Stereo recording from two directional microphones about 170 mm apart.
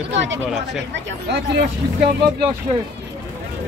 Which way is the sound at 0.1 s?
90° right.